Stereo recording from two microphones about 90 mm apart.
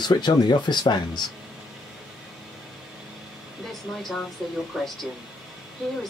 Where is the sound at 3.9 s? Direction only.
5° left (ahead or behind).